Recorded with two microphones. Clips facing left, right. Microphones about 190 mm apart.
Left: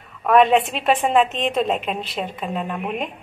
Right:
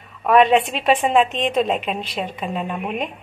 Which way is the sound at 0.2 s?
Centre (ahead or behind).